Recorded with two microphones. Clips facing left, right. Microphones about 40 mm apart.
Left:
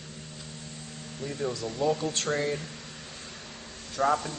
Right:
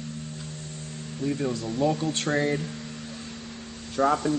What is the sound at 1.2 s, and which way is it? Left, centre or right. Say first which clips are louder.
Speech: right 5 dB; centre.